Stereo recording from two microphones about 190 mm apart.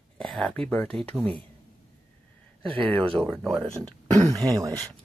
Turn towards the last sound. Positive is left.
turn(degrees=-20)  # may be behind; listen again after turning